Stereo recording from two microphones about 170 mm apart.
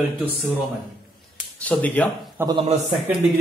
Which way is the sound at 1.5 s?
10° left (ahead or behind).